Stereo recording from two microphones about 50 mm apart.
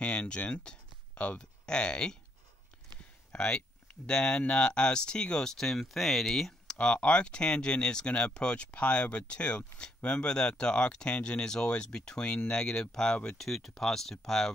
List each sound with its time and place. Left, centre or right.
0.0 s speech: left; by 6.8 s centre
6.8 s speech: left
13.5 s speech: centre